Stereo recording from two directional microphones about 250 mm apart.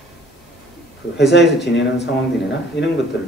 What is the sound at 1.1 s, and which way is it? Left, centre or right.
Speech, left.